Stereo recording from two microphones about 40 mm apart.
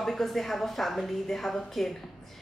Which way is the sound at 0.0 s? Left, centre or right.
Centre.